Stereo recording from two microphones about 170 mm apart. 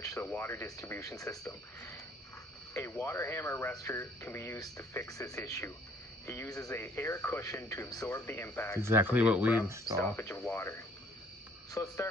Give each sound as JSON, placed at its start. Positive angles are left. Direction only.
{"t": 0.0, "sound": "speech", "side_deg": 15}
{"t": 8.8, "sound": "speech", "side_deg": -10}
{"t": 9.9, "sound": "speech", "side_deg": 15}